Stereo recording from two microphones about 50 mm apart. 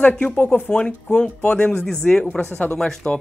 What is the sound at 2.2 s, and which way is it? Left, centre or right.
Speech, left.